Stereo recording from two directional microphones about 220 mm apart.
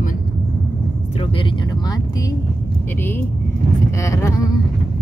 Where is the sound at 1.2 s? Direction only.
25° left (ahead or behind).